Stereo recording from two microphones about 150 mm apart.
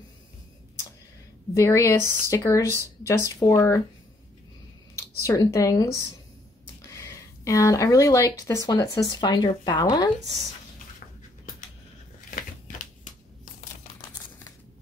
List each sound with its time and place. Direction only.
1.5 s speech: 20° left (ahead or behind)
5.2 s speech: 20° left (ahead or behind)